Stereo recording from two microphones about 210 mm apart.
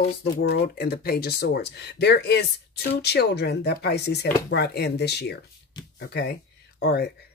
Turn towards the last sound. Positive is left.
turn(degrees=50)  # may be behind; listen again after turning